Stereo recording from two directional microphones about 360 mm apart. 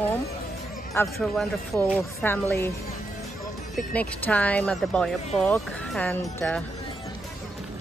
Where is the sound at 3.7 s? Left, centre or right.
Centre.